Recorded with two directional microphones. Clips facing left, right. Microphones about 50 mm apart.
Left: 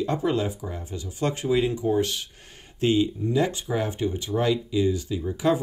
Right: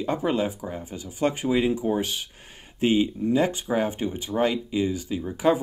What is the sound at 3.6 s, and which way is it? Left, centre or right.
Speech, right.